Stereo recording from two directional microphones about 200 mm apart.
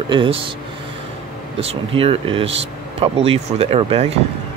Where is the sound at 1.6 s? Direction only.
30° right (ahead or behind).